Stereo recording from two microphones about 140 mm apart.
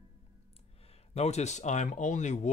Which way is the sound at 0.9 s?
50° left (ahead or behind).